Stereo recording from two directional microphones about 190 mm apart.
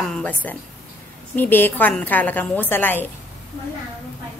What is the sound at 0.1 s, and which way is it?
A woman's voice, 10° left (ahead or behind).